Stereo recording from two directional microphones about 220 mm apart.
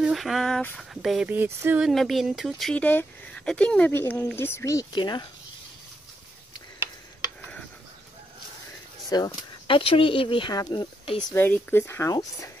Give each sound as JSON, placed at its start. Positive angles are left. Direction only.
{"t": 0.0, "sound": "a sound", "side_deg": 0}
{"t": 9.1, "sound": "speech", "side_deg": 20}
{"t": 11.2, "sound": "speech", "side_deg": 5}